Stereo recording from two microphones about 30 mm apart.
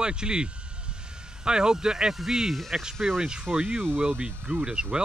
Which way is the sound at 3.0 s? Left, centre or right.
Centre.